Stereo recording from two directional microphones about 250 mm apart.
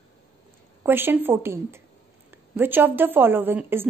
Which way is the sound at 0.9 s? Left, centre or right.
Centre.